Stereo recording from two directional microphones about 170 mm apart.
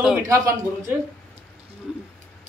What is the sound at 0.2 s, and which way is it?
Speech, 15° right (ahead or behind).